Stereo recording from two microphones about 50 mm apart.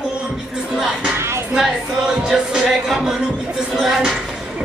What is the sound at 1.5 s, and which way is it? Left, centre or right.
Speech, centre.